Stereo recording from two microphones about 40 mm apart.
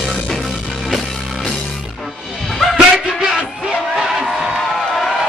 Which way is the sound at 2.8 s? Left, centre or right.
Centre.